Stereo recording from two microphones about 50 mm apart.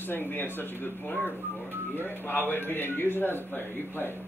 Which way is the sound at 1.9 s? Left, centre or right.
Left.